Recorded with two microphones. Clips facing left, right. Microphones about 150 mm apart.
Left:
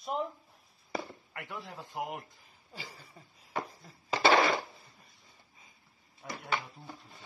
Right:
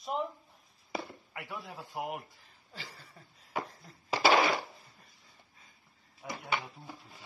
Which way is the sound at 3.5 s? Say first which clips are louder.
Even; 5° right (ahead or behind).